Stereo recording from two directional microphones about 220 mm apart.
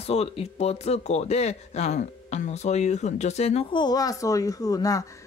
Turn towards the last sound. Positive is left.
turn(degrees=15)  # may be behind; listen again after turning